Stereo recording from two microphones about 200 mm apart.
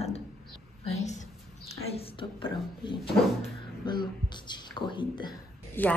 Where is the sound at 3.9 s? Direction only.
20° left (ahead or behind).